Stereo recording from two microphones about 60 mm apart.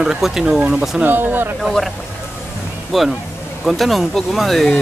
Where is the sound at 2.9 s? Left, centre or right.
Centre.